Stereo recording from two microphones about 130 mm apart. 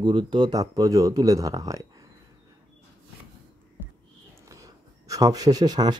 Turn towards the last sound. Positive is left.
turn(degrees=-30)  # may be behind; listen again after turning